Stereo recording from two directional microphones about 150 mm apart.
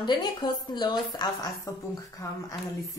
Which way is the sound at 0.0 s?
30° left (ahead or behind).